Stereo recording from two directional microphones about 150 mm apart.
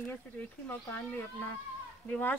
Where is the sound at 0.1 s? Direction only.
10° left (ahead or behind).